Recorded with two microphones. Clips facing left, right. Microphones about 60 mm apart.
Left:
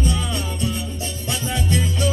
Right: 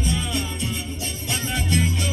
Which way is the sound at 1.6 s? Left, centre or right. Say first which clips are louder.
Left 1 dB; right.